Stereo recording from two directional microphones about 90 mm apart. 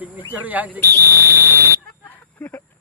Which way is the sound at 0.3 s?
20° right (ahead or behind).